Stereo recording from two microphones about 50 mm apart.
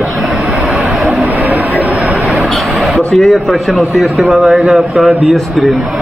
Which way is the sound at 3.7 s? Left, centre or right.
Centre.